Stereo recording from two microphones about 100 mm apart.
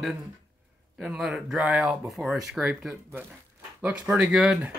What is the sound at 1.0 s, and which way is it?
Speech, 10° right (ahead or behind).